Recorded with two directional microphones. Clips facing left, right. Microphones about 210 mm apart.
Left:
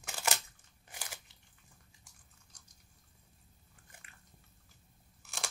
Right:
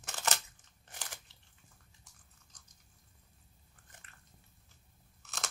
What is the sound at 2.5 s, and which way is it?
Chewing, 10° left (ahead or behind).